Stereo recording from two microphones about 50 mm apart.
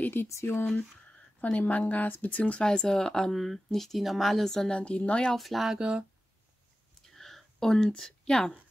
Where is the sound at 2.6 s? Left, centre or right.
Centre.